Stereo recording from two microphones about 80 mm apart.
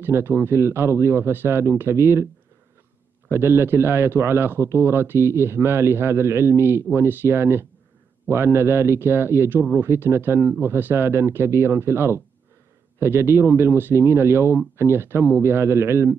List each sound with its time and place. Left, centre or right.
0.0 s a man's voice: right
3.3 s a man's voice: right